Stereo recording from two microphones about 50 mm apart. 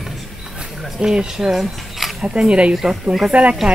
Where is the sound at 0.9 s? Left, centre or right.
Centre.